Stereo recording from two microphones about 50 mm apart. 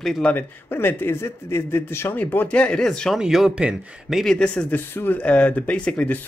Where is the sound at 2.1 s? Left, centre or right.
Left.